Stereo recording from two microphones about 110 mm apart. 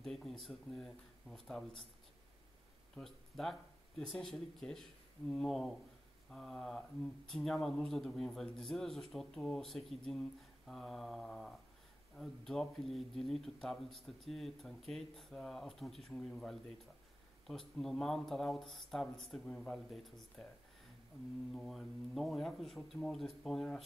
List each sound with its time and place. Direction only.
0.0 s speech: 5° left (ahead or behind)
3.0 s speech: centre (ahead or behind)
21.5 s speech: centre (ahead or behind)